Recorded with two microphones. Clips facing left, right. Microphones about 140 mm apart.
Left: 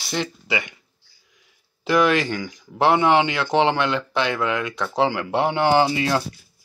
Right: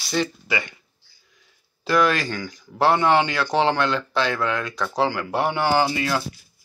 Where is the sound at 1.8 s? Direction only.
20° left (ahead or behind).